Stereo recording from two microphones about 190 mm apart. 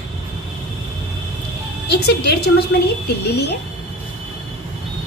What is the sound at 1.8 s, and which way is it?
A woman's voice, 60° left (ahead or behind).